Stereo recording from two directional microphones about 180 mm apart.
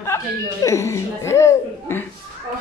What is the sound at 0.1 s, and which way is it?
Chuckle, 15° left (ahead or behind).